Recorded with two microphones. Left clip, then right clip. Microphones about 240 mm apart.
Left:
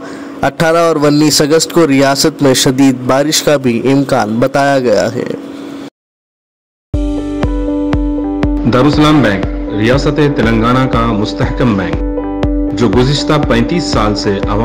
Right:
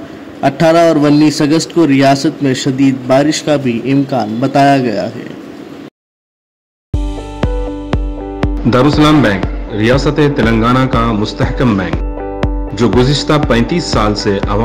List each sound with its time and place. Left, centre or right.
0.4 s a man's voice: centre
7.9 s speech: centre